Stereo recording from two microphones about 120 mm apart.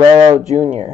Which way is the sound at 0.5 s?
80° right.